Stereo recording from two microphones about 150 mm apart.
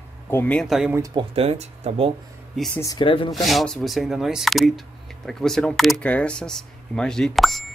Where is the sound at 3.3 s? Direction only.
Centre (ahead or behind).